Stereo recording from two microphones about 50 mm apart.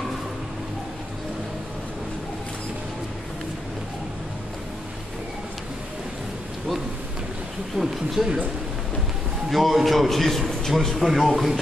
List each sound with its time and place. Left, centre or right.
7.7 s a man's voice: centre
9.5 s a man's voice: centre